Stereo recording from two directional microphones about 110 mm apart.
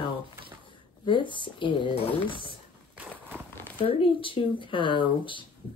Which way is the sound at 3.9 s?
55° left (ahead or behind).